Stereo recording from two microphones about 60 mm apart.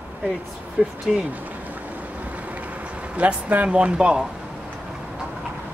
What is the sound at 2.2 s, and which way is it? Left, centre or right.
Vehicle, right.